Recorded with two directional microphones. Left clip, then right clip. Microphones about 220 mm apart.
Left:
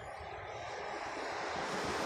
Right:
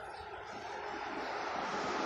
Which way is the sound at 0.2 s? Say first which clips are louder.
Left 1 dB; 50° left (ahead or behind).